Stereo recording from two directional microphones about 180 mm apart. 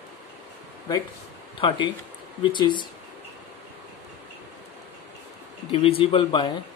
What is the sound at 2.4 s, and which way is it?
Speech, 25° left (ahead or behind).